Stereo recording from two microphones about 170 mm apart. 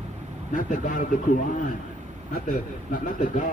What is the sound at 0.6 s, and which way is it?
Speech, 50° left (ahead or behind).